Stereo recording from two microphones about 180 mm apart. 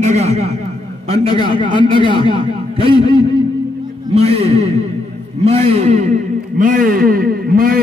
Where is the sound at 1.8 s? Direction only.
25° left (ahead or behind).